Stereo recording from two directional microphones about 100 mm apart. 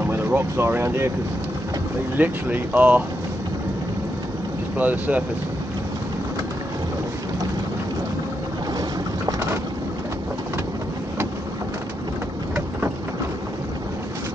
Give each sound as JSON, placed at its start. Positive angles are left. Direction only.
{"t": 0.1, "sound": "speech", "side_deg": -25}
{"t": 2.1, "sound": "speech", "side_deg": -20}
{"t": 4.7, "sound": "speech", "side_deg": -15}
{"t": 9.2, "sound": "boat", "side_deg": -25}